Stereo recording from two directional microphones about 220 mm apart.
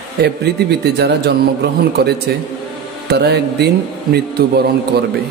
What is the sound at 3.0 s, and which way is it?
Speech, 50° right (ahead or behind).